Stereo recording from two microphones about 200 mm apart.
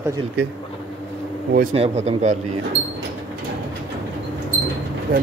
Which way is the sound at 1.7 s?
30° right (ahead or behind).